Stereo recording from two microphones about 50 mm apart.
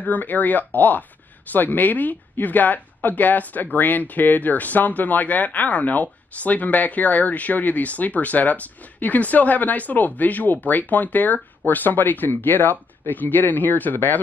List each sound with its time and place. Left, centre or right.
0.0 s speech: left